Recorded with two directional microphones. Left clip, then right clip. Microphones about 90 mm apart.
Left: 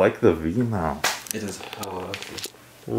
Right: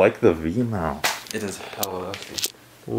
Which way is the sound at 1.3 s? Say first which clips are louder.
Right 3 dB; 35° right (ahead or behind).